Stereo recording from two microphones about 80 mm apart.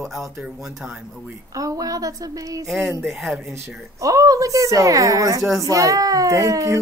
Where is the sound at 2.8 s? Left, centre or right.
Right.